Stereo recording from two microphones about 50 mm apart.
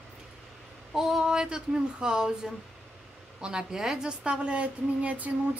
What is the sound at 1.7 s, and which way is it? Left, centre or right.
A woman's voice, centre.